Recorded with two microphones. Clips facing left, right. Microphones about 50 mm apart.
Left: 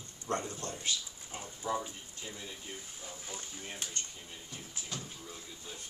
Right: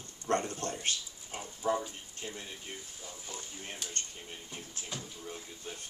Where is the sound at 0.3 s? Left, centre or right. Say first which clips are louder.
Right 4 dB; right.